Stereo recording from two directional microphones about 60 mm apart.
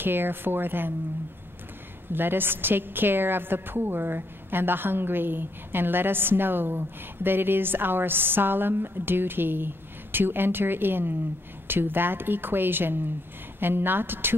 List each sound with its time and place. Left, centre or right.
0.0 s a woman's voice: right
2.1 s a woman's voice: right